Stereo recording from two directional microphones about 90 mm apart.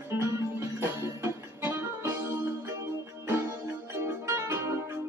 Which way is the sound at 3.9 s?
30° right (ahead or behind).